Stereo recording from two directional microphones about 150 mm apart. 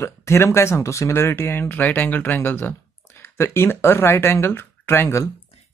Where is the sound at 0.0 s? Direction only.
20° left (ahead or behind).